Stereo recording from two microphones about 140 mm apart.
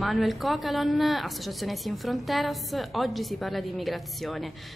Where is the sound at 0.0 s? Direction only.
Centre (ahead or behind).